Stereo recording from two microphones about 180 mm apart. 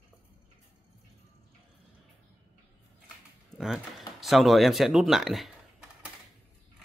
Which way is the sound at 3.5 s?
Centre (ahead or behind).